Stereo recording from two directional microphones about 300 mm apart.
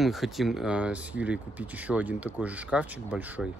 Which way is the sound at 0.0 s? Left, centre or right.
Centre.